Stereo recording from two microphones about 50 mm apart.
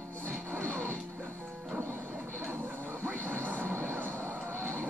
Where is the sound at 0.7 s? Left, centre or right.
Left.